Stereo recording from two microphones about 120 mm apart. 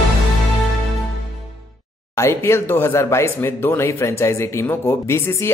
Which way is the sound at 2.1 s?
20° left (ahead or behind).